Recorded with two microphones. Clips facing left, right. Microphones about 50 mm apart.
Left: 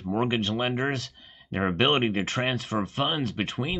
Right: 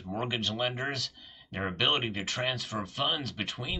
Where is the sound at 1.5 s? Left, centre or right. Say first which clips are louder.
Left 6 dB; left.